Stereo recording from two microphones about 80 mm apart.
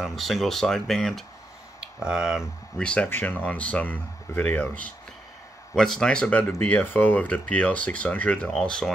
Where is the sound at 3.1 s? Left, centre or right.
Left.